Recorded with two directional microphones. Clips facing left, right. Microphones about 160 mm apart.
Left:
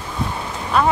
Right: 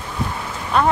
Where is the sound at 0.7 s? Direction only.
Centre (ahead or behind).